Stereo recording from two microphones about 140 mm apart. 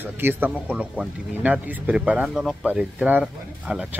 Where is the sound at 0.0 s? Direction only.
15° right (ahead or behind).